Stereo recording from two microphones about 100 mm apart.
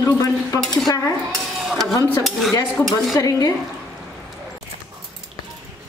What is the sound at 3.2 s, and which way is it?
Speech, 35° left (ahead or behind).